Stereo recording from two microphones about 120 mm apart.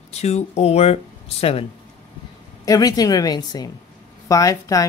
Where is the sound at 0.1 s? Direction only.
65° left (ahead or behind).